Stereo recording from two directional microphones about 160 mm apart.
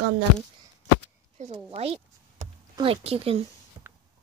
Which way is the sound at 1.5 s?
40° right (ahead or behind).